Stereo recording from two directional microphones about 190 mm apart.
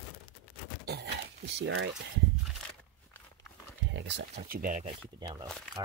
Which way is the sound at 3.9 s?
70° right (ahead or behind).